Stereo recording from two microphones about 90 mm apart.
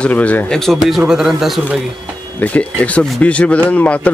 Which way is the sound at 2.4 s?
15° left (ahead or behind).